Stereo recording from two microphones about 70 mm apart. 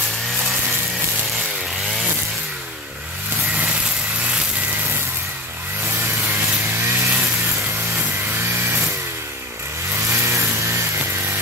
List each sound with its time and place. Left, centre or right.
5.9 s a sound: right
7.9 s music: right
8.6 s vehicle: right
10.0 s chainsaw: right